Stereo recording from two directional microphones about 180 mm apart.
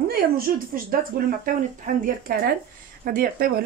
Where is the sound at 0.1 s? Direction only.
55° right (ahead or behind).